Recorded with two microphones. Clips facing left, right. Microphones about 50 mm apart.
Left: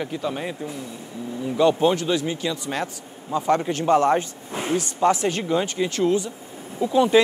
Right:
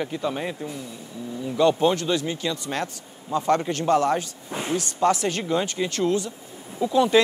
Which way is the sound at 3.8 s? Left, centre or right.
Left.